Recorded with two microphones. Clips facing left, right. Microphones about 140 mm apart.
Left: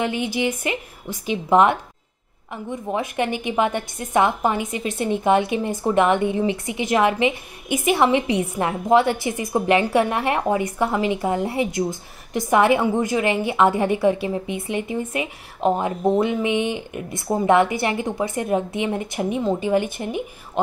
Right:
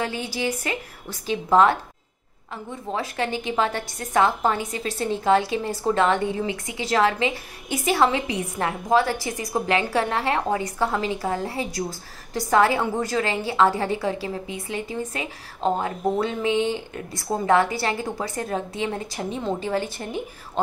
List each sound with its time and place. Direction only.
0.0 s a woman's voice: 20° left (ahead or behind)